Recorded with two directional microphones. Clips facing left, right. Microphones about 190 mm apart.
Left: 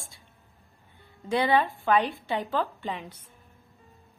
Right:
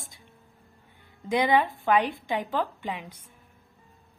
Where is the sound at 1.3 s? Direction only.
15° right (ahead or behind).